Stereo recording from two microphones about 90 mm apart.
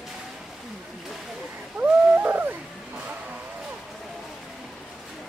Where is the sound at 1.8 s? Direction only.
20° right (ahead or behind).